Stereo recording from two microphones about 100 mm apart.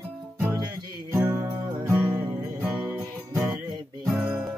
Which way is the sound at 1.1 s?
25° right (ahead or behind).